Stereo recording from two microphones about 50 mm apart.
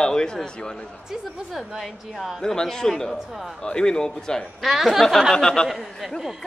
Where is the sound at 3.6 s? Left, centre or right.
Centre.